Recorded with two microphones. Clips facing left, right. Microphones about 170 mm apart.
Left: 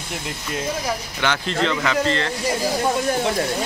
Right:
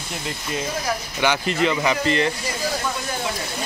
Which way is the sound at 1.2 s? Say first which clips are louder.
Right 2 dB; 10° right (ahead or behind).